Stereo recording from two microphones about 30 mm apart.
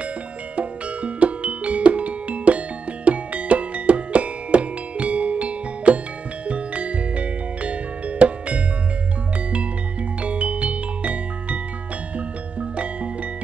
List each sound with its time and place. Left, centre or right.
0.6 s music: right
10.2 s music: right